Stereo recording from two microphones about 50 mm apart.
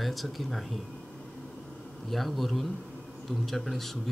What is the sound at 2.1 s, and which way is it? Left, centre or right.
A man's voice, centre.